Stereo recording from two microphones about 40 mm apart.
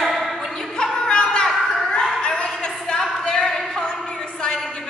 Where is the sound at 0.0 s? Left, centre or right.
Centre.